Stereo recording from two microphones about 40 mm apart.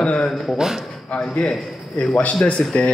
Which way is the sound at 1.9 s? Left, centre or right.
Left.